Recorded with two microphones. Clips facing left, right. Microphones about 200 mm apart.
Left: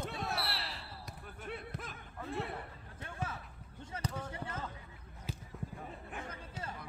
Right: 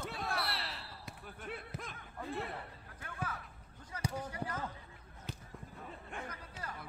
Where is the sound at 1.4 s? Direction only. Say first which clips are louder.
Left 1 dB; centre (ahead or behind).